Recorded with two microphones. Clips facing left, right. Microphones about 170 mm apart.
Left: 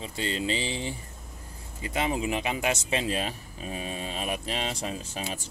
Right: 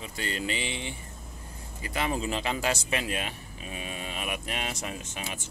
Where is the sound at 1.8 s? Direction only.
20° left (ahead or behind).